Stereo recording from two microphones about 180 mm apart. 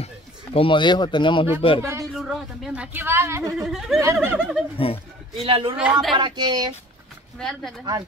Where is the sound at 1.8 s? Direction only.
15° right (ahead or behind).